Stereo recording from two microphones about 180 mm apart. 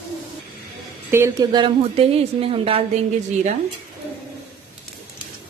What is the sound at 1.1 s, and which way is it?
Speech, 15° right (ahead or behind).